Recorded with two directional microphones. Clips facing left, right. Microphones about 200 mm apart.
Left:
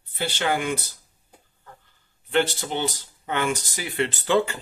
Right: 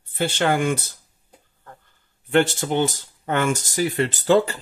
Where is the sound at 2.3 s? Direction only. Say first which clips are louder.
Right 4 dB; 50° right (ahead or behind).